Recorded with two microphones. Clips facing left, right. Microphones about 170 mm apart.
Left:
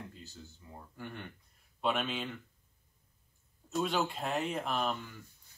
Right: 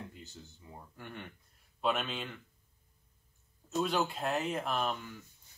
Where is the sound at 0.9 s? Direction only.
Centre (ahead or behind).